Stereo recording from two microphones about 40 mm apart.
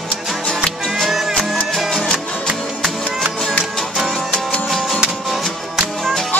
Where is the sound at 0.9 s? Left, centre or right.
Centre.